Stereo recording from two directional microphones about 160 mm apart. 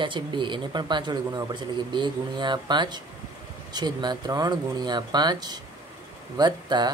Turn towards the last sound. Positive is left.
turn(degrees=-25)  # may be behind; listen again after turning